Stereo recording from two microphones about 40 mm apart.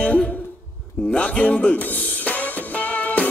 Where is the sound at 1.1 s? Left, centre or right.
Left.